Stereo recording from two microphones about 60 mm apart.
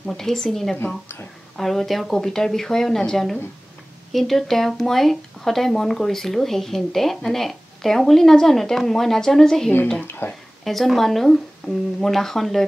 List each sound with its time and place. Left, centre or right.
0.0 s speech: centre
10.0 s speech: left
10.6 s speech: centre